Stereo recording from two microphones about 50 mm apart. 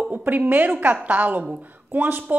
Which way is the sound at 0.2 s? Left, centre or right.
Right.